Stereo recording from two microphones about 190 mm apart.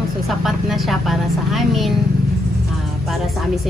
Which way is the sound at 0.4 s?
Centre (ahead or behind).